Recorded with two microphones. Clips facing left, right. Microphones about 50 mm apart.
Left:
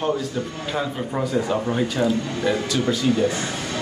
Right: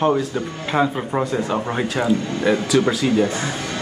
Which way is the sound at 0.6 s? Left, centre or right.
Right.